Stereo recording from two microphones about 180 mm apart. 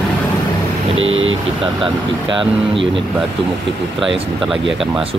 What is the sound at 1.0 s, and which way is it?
Speech, 90° right.